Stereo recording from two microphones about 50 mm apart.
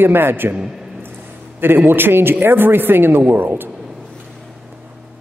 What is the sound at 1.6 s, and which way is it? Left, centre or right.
A woman's voice, right.